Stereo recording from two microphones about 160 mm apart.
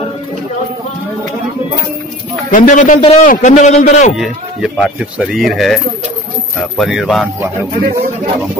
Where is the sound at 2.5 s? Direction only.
55° left (ahead or behind).